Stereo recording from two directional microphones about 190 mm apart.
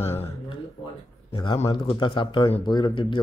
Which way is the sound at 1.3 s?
25° left (ahead or behind).